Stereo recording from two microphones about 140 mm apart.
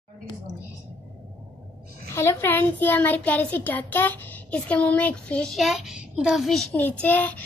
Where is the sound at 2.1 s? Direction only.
15° left (ahead or behind).